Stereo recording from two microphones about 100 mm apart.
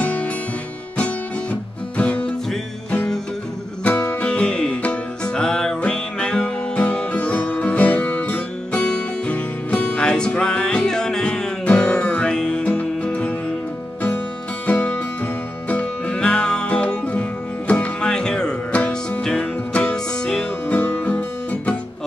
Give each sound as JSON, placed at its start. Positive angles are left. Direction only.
{"t": 0.0, "sound": "music", "side_deg": 15}
{"t": 3.8, "sound": "music", "side_deg": 20}
{"t": 14.7, "sound": "music", "side_deg": 15}
{"t": 20.7, "sound": "music", "side_deg": 20}